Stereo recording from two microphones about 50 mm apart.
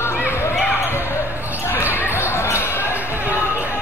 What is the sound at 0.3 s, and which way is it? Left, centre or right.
Basketball bounce, left.